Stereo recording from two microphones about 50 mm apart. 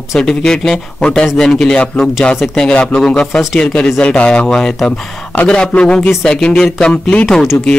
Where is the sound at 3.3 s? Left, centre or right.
Centre.